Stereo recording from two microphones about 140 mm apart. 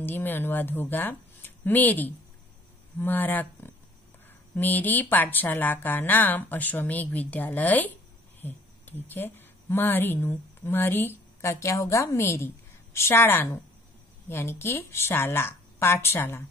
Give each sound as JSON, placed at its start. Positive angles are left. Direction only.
{"t": 0.0, "sound": "a woman's voice", "side_deg": 15}